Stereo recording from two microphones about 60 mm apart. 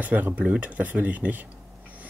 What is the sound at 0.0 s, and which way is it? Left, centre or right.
Speech, right.